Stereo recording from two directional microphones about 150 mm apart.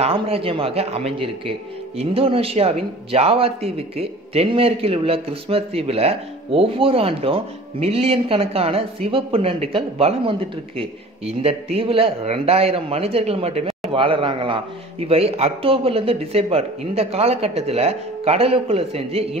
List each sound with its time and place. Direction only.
0.0 s a man's voice: 40° right (ahead or behind)
11.4 s a man's voice: 40° right (ahead or behind)